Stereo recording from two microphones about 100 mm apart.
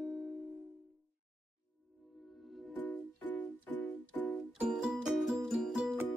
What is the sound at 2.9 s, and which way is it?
Music, 15° left (ahead or behind).